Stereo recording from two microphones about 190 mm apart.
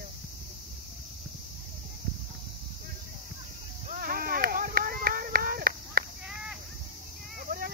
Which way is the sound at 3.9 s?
50° right (ahead or behind).